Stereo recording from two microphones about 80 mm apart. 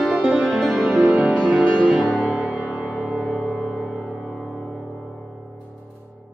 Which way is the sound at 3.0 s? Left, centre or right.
Centre.